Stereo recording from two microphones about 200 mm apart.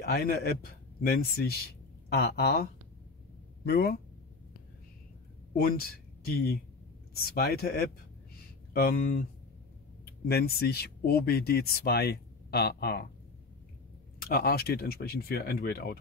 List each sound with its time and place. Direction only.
0.0 s a man's voice: 50° left (ahead or behind)
5.5 s speech: 50° left (ahead or behind)
10.2 s speech: 50° left (ahead or behind)
14.2 s speech: 50° left (ahead or behind)